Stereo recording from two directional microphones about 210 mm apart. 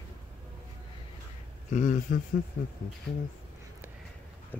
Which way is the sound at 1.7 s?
35° left (ahead or behind).